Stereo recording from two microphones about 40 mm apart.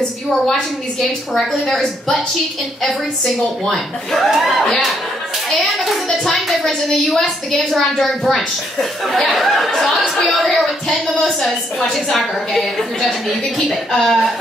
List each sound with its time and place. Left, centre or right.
1.3 s a woman's voice: centre
1.7 s a woman's voice: centre
2.8 s a child's voice: centre
11.9 s a child's voice: centre